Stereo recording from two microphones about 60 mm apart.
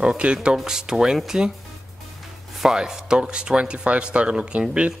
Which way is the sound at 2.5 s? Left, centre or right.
Centre.